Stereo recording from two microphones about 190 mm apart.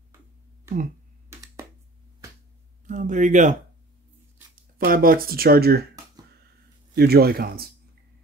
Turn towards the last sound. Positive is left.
turn(degrees=-50)  # may be behind; listen again after turning